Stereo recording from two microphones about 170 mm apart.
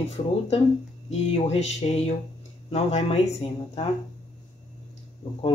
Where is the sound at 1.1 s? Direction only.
40° left (ahead or behind).